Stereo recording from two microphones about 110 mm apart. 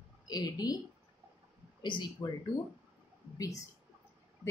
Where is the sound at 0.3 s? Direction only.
35° left (ahead or behind).